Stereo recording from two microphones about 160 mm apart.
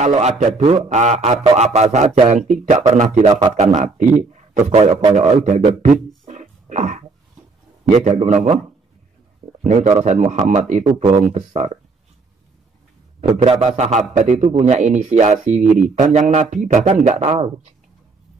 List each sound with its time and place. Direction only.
0.0 s a man's voice: 45° right (ahead or behind)
6.2 s a sound: 50° right (ahead or behind)
8.2 s a man's voice: 45° right (ahead or behind)
9.6 s a man's voice: 45° right (ahead or behind)
13.4 s a man's voice: 40° right (ahead or behind)